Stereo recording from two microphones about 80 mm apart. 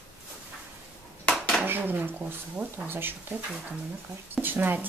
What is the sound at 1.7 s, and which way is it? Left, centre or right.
Speech, right.